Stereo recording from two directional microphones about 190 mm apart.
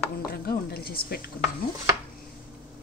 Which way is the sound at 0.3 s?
55° left (ahead or behind).